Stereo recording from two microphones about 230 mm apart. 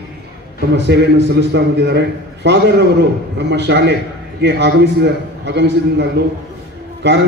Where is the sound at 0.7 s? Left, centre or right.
Right.